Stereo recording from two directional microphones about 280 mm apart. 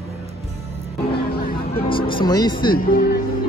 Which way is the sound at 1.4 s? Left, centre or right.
Left.